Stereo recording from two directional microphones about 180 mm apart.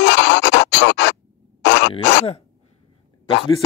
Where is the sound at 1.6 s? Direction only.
75° left (ahead or behind).